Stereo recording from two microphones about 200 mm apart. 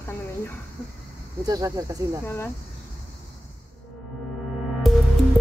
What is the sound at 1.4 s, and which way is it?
Speech, 15° right (ahead or behind).